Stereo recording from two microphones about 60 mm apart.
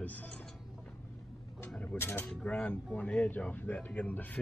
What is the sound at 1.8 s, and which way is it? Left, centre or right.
Speech, left.